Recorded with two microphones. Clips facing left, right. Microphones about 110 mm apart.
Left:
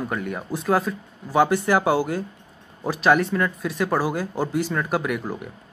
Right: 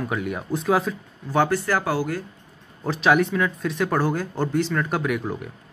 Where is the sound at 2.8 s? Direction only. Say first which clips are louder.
Even; 5° left (ahead or behind).